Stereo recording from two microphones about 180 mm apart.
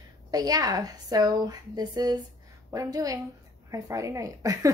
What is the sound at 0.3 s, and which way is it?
A woman's voice, 20° right (ahead or behind).